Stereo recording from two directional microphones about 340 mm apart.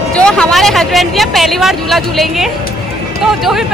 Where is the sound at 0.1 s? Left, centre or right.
Centre.